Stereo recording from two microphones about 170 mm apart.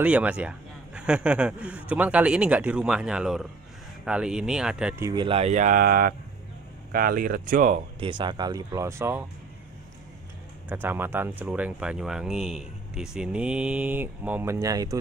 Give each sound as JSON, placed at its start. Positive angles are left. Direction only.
{"t": 0.0, "sound": "speech", "side_deg": -5}
{"t": 5.0, "sound": "speech", "side_deg": -25}
{"t": 8.0, "sound": "speech", "side_deg": -25}
{"t": 10.7, "sound": "speech", "side_deg": -10}